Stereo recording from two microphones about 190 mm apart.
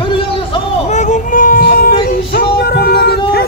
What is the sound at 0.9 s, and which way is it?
Child singing, 40° left (ahead or behind).